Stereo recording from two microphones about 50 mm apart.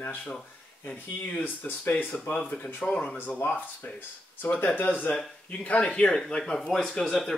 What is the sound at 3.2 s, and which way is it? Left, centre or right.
Speech, left.